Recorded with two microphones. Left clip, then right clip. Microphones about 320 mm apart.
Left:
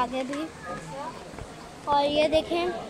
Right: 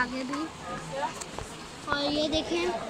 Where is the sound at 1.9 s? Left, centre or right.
Left.